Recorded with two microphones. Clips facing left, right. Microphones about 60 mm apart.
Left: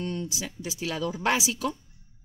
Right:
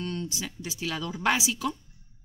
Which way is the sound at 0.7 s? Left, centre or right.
Centre.